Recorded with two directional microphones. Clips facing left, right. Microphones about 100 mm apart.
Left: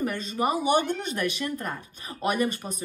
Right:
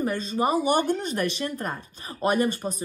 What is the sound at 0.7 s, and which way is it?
Speech, 45° right (ahead or behind).